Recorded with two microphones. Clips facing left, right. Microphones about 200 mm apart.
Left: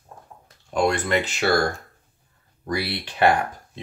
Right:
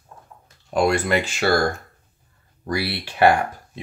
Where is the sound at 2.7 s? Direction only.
10° right (ahead or behind).